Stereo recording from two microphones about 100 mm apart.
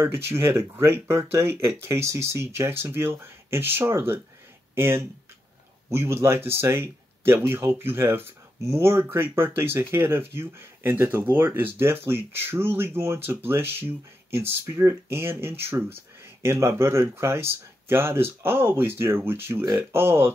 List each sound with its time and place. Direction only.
0.0 s speech: 25° right (ahead or behind)